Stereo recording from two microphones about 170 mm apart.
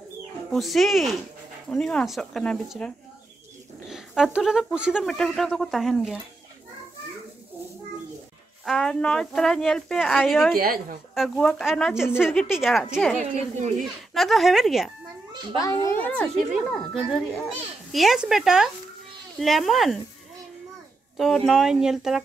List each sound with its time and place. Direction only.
0.5 s speech: centre (ahead or behind)
3.9 s speech: 5° right (ahead or behind)
8.6 s speech: 5° left (ahead or behind)
10.5 s speech: 60° right (ahead or behind)
11.1 s speech: centre (ahead or behind)
15.6 s a child's voice: 15° left (ahead or behind); by 20.0 s centre (ahead or behind)
21.2 s speech: centre (ahead or behind)